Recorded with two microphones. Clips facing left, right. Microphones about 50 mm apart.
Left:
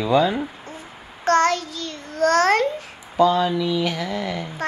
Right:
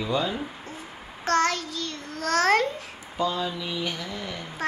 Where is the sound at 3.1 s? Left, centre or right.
Left.